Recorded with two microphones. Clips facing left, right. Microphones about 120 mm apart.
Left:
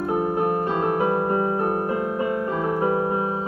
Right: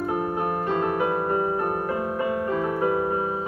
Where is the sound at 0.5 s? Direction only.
35° left (ahead or behind).